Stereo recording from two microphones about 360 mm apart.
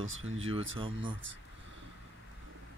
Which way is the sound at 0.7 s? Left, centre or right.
Centre.